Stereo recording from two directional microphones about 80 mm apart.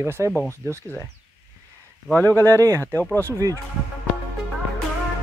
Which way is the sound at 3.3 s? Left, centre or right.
Right.